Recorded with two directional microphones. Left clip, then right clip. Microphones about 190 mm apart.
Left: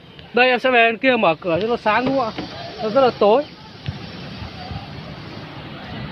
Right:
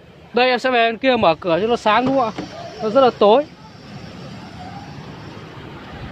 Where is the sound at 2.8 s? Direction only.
30° right (ahead or behind).